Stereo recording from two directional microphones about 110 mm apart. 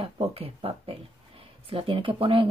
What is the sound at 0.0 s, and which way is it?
Speech, 60° right (ahead or behind).